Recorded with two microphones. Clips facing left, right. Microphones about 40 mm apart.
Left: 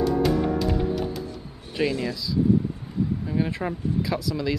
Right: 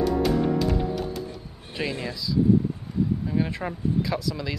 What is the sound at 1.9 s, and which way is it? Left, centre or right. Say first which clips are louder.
Speech: left 3 dB; right.